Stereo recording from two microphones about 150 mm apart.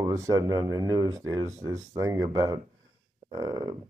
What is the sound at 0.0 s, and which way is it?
Speech, 20° right (ahead or behind).